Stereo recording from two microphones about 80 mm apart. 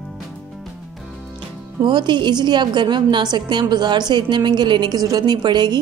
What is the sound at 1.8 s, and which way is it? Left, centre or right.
A woman's voice, right.